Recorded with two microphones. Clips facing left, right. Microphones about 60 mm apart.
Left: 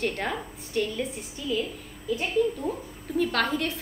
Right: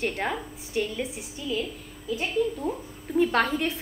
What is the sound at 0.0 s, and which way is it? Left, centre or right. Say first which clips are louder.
A woman's voice: even; centre.